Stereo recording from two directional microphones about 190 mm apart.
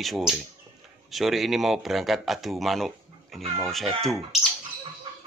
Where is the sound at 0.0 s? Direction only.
Centre (ahead or behind).